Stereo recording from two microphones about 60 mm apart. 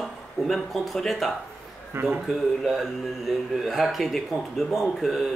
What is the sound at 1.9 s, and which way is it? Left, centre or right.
Speech, right.